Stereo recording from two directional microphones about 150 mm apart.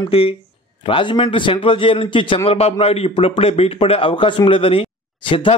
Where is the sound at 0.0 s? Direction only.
40° left (ahead or behind).